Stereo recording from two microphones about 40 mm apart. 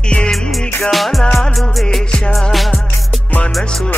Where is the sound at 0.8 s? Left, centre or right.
Centre.